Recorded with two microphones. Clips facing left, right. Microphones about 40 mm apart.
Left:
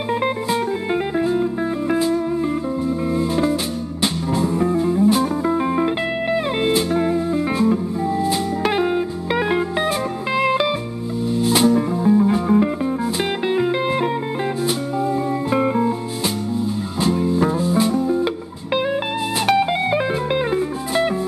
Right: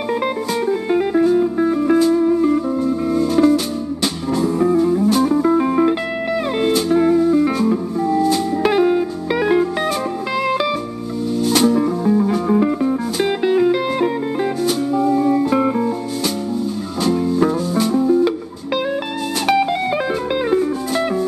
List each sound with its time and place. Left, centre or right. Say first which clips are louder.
0.1 s music: even; centre
17.1 s music: right 3 dB; centre